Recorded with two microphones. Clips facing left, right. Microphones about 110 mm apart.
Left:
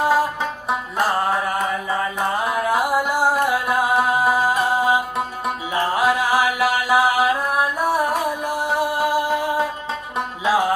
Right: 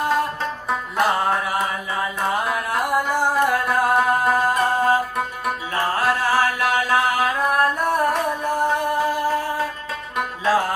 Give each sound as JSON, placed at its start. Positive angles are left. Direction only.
{"t": 0.0, "sound": "music", "side_deg": 5}
{"t": 0.9, "sound": "mantra", "side_deg": 0}
{"t": 2.3, "sound": "music", "side_deg": 5}